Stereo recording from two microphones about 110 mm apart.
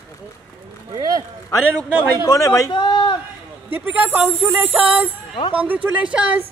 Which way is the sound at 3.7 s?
15° right (ahead or behind).